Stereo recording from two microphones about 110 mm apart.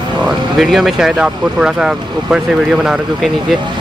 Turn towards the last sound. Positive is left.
turn(degrees=-5)  # may be behind; listen again after turning